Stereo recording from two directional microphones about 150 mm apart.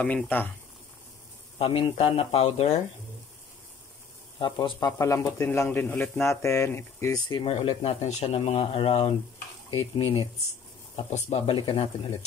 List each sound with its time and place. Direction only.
0.0 s speech: 10° left (ahead or behind)
1.6 s speech: 40° left (ahead or behind)
4.4 s speech: 30° left (ahead or behind)
4.7 s speech: 20° left (ahead or behind)
7.4 s speech: 40° left (ahead or behind)
11.0 s speech: 50° left (ahead or behind)